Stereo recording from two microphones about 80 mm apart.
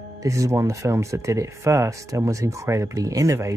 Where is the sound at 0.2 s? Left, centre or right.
Right.